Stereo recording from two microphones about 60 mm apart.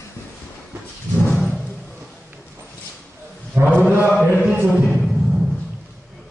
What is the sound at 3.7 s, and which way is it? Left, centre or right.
Chant, right.